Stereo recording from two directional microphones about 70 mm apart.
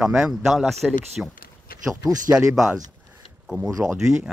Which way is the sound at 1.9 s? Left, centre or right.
Right.